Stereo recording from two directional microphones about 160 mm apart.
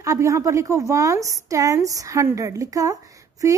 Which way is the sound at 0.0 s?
20° right (ahead or behind).